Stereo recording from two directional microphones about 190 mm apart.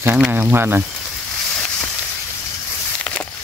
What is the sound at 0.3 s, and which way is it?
Speech, 10° right (ahead or behind).